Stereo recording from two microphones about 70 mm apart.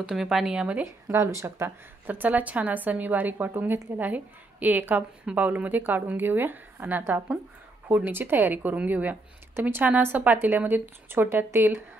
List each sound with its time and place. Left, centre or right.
0.1 s speech: centre
0.8 s speech: right
2.0 s a woman's voice: right